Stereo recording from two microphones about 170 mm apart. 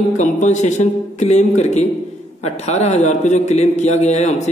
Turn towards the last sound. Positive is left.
turn(degrees=40)  # may be behind; listen again after turning